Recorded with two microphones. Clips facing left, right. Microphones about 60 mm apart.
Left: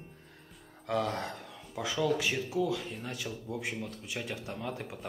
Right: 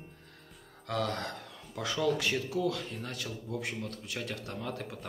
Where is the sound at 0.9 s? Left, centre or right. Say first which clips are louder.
Left 1 dB; centre.